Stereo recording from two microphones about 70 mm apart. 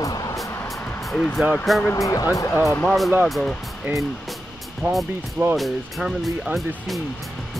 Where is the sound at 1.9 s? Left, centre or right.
Left.